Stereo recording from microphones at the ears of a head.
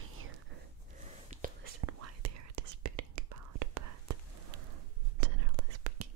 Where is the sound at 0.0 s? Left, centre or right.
Right.